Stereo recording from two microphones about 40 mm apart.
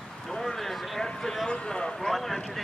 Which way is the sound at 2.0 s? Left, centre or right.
Centre.